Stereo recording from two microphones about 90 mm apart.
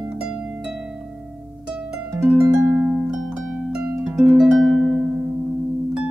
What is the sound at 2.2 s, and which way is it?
Harp, 5° right (ahead or behind).